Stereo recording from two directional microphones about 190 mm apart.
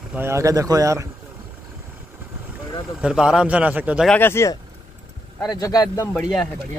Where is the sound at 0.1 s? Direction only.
15° right (ahead or behind).